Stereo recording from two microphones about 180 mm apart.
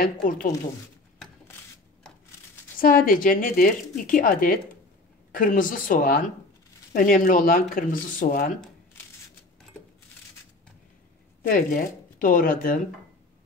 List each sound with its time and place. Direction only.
0.0 s speech: 50° left (ahead or behind)
2.8 s speech: 50° left (ahead or behind)
11.4 s speech: 50° left (ahead or behind)